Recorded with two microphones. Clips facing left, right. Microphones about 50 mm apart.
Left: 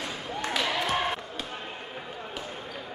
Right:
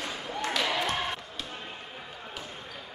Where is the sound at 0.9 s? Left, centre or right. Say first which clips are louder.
Left 3 dB; centre.